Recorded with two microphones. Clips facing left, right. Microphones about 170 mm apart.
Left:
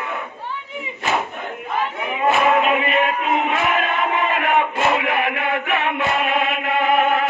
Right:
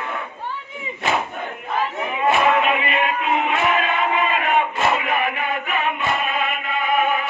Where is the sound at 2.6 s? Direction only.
45° left (ahead or behind).